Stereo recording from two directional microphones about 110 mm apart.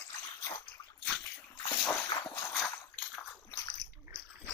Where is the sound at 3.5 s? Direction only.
40° left (ahead or behind).